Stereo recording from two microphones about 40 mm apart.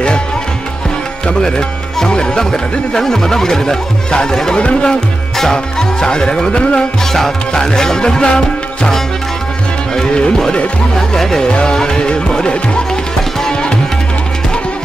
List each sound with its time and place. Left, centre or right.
2.0 s speech: centre
4.6 s music: left
5.4 s speech: centre
6.5 s music: left
7.1 s speech: centre
9.9 s music: centre
11.0 s speech: centre
11.5 s music: centre